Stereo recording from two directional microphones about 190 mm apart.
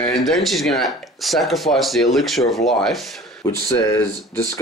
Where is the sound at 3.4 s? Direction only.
15° left (ahead or behind).